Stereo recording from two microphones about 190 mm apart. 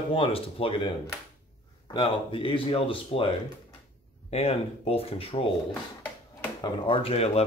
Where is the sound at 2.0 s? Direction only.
30° left (ahead or behind).